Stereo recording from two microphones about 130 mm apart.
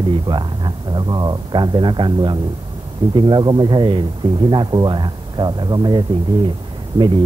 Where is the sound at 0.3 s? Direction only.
35° right (ahead or behind).